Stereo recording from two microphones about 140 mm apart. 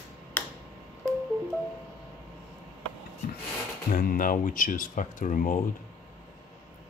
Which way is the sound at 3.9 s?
80° left.